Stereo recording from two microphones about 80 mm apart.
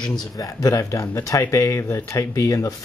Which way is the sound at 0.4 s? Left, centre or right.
Left.